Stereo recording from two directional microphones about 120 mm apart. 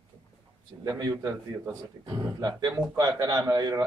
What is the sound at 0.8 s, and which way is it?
Speech, 30° right (ahead or behind).